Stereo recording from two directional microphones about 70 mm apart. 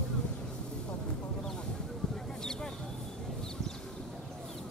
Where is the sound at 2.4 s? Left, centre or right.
Centre.